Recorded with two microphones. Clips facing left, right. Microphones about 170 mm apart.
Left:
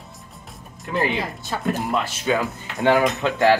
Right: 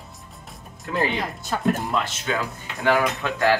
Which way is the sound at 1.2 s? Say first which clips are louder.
Right 1 dB; centre (ahead or behind).